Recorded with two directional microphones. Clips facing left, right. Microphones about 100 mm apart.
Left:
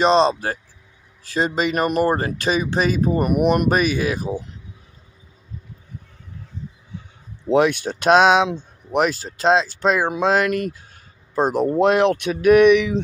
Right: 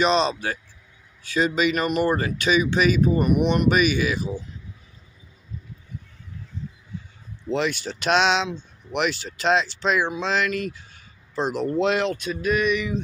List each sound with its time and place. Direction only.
0.0 s speech: 40° left (ahead or behind)
7.5 s speech: 55° left (ahead or behind); by 13.0 s 85° left